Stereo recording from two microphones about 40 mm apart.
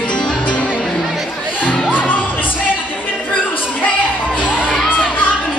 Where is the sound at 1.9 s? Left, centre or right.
Left.